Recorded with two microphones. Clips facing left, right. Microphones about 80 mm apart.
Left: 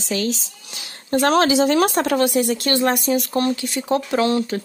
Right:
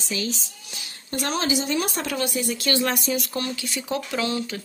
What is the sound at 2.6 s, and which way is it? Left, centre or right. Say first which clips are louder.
Speech: left 5 dB; left.